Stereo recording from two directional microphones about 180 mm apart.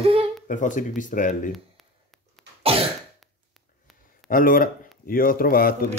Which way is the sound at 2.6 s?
35° right (ahead or behind).